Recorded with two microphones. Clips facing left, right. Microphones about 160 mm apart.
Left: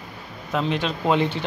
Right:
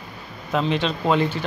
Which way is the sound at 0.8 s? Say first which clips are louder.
Right 1 dB; 15° left (ahead or behind).